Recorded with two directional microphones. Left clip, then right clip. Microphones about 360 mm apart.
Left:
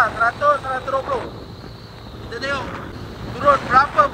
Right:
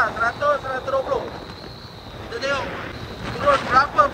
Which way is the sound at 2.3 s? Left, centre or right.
Centre.